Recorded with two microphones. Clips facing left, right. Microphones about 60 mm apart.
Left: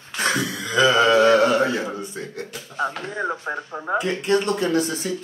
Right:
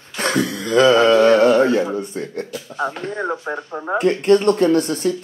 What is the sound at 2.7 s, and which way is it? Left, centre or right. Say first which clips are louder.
Speech: right 2 dB; centre.